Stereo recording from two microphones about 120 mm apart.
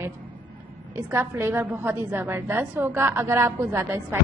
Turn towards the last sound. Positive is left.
turn(degrees=-25)  # may be behind; listen again after turning